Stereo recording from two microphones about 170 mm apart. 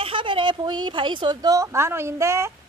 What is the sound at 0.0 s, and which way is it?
A woman's voice, 30° right (ahead or behind).